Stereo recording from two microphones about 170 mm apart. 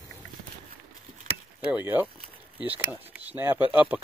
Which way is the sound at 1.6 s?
10° right (ahead or behind).